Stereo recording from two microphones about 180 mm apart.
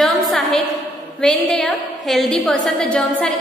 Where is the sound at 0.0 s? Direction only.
Centre (ahead or behind).